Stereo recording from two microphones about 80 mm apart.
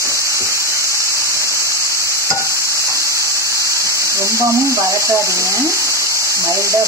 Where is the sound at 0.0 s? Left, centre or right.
Right.